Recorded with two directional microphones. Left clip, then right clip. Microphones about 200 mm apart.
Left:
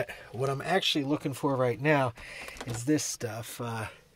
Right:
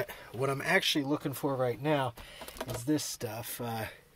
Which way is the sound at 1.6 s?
40° left (ahead or behind).